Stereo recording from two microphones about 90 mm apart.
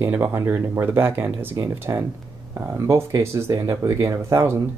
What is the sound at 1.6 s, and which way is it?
Speech, 35° right (ahead or behind).